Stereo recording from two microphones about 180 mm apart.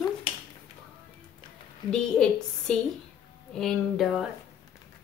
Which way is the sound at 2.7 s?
5° left (ahead or behind).